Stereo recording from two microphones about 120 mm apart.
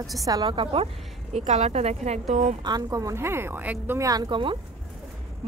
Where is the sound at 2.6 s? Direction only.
35° right (ahead or behind); by 4.0 s 15° right (ahead or behind).